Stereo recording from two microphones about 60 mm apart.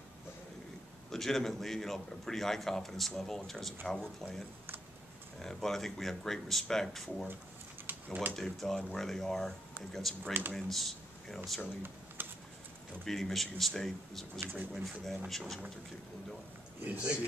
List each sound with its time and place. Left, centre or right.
1.1 s a man's voice: centre
7.9 s a sound: right
8.4 s a man's voice: centre
12.2 s a sound: right
13.0 s a man's voice: centre
16.8 s speech: right